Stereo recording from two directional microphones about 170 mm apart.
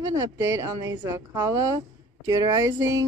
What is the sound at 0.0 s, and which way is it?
Speech, 20° right (ahead or behind).